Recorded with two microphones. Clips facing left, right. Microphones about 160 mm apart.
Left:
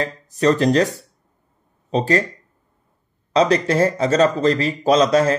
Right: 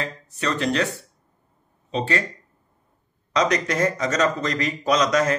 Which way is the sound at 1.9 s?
40° left (ahead or behind).